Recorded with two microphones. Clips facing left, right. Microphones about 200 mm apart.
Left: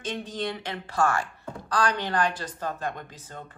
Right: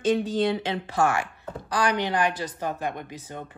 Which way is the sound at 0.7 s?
20° right (ahead or behind).